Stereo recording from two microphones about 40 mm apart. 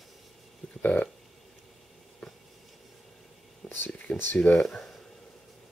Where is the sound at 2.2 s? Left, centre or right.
Centre.